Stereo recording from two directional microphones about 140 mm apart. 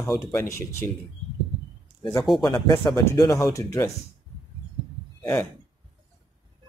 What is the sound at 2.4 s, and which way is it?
Speech, 30° left (ahead or behind).